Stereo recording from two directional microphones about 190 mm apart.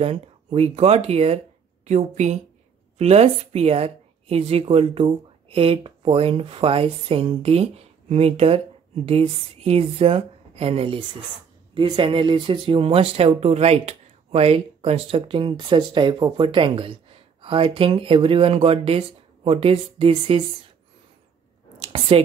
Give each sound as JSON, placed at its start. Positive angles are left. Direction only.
{"t": 0.0, "sound": "a woman's voice", "side_deg": -30}